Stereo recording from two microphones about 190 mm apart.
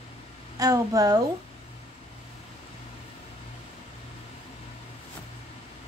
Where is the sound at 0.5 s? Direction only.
20° right (ahead or behind).